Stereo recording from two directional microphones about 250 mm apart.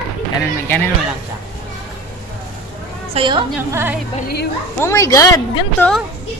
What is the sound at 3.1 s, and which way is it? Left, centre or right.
Speech, centre.